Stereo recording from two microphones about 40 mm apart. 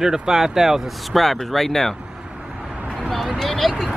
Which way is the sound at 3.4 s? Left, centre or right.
Centre.